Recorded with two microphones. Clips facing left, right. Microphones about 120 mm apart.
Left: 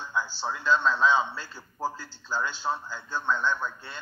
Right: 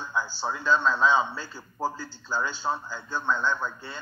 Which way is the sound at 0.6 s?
5° right (ahead or behind).